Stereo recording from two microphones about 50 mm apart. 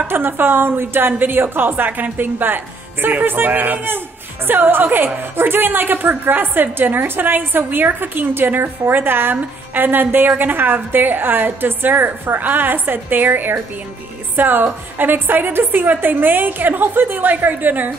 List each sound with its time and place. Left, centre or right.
0.1 s a woman's voice: right